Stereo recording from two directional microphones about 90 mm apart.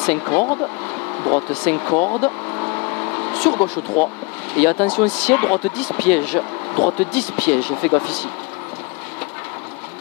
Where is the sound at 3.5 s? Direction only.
20° left (ahead or behind).